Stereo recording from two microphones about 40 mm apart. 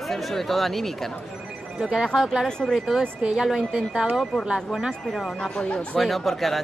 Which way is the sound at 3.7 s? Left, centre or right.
Right.